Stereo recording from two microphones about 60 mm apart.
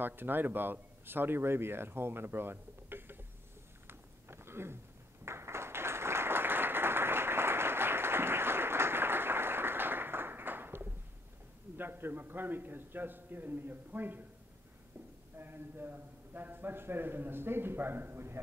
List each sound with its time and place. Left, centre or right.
0.0 s speech: right
3.8 s a sound: right
5.2 s applause: right
11.7 s a man's voice: right
15.3 s a man's voice: right